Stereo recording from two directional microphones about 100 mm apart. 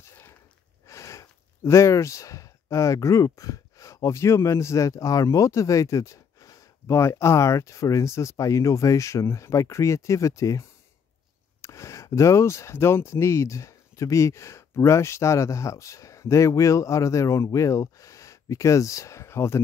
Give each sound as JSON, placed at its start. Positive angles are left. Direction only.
{"t": 0.8, "sound": "speech", "side_deg": 30}
{"t": 11.6, "sound": "speech", "side_deg": 30}